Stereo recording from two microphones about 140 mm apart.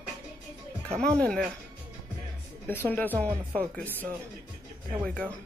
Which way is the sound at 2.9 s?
10° left (ahead or behind).